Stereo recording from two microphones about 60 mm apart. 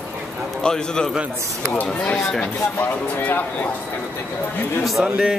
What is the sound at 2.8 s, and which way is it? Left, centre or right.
Speech, left.